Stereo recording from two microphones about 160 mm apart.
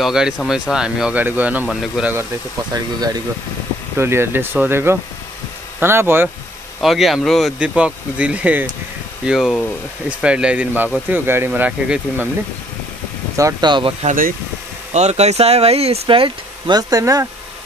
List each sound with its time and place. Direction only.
0.0 s speech: centre (ahead or behind)
2.7 s speech: 25° right (ahead or behind)
6.8 s speech: centre (ahead or behind)
13.4 s speech: 25° right (ahead or behind)
14.0 s speech: 60° right (ahead or behind)
14.9 s speech: 45° right (ahead or behind); by 17.3 s 20° right (ahead or behind)